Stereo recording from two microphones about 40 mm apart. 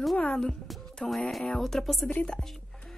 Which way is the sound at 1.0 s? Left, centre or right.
Centre.